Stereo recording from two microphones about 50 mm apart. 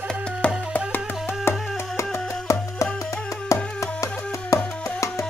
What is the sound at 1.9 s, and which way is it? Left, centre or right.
Music, left.